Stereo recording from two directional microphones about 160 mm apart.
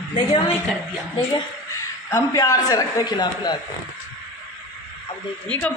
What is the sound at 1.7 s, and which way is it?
A man's voice, 20° left (ahead or behind).